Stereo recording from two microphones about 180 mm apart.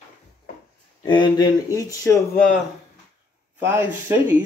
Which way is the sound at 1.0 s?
25° left (ahead or behind).